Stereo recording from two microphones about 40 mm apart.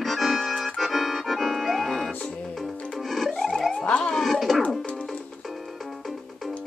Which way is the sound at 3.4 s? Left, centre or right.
Centre.